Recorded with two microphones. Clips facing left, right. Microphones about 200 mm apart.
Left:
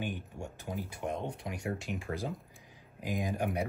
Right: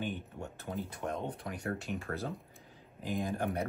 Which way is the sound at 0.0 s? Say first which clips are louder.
Even; 10° left (ahead or behind).